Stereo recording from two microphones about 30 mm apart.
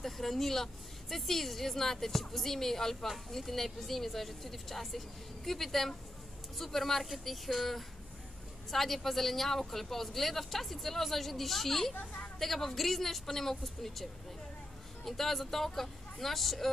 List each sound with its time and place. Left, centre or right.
0.0 s speech: centre
11.9 s a woman's voice: left
12.4 s speech: centre
15.0 s speech: centre